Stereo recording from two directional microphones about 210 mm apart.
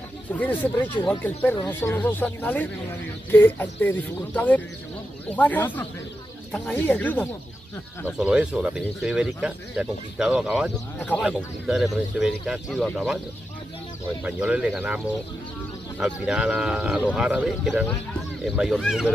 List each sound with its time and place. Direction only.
0.3 s speech: 10° left (ahead or behind)
8.2 s speech: 5° right (ahead or behind)
11.0 s speech: 5° left (ahead or behind)
11.2 s speech: 5° right (ahead or behind)
14.2 s speech: 5° right (ahead or behind)